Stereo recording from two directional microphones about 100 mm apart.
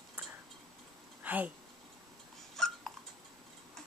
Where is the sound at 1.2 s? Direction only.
15° right (ahead or behind).